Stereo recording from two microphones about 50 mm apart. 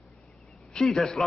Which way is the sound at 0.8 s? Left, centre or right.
Centre.